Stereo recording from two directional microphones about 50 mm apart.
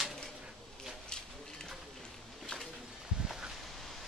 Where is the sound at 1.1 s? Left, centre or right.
Centre.